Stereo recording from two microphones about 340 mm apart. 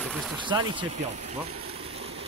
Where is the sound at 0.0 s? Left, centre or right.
Centre.